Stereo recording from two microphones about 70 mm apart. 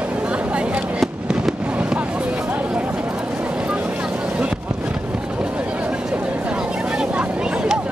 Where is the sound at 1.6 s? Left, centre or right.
Centre.